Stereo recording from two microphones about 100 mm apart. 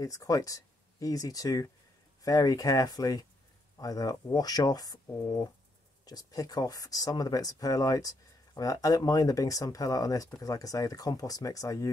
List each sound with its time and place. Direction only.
0.0 s speech: 35° left (ahead or behind)
6.0 s speech: 40° left (ahead or behind)